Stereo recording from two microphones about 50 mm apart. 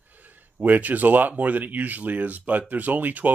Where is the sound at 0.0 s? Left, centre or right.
Right.